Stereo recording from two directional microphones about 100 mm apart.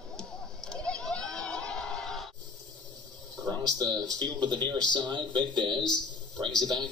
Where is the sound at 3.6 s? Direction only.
40° right (ahead or behind).